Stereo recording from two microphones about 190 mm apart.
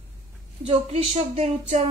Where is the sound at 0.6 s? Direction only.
35° right (ahead or behind).